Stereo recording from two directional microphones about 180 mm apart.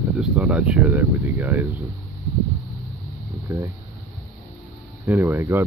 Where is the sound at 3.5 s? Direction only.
15° right (ahead or behind).